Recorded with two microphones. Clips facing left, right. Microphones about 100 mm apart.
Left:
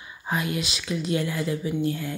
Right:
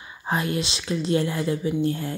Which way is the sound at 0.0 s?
30° right (ahead or behind).